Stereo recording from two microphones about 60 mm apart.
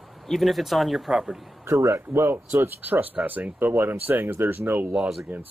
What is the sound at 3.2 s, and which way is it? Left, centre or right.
Speech, right.